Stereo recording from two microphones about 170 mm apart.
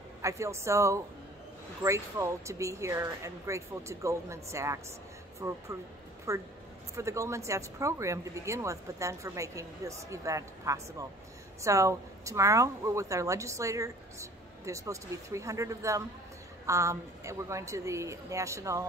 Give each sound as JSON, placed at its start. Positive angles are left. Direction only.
{"t": 0.2, "sound": "speech", "side_deg": -15}